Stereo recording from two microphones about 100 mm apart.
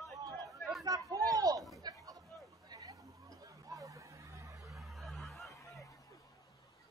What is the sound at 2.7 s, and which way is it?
Chatter, 35° right (ahead or behind).